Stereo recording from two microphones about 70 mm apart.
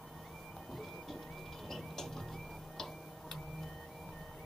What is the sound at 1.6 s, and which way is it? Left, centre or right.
Music, centre.